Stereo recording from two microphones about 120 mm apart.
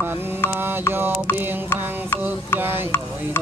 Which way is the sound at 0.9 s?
20° right (ahead or behind).